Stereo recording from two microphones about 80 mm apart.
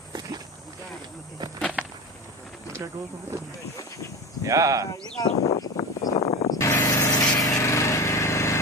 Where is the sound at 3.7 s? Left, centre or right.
Left.